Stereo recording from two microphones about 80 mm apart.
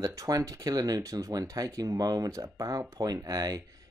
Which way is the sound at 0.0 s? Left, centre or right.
Right.